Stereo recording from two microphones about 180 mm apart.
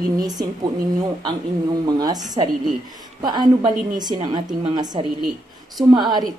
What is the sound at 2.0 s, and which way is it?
Speech, 20° right (ahead or behind).